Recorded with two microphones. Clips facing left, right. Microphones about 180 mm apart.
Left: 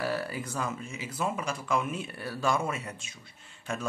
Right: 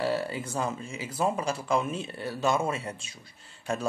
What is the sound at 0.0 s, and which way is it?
Speech, 25° right (ahead or behind).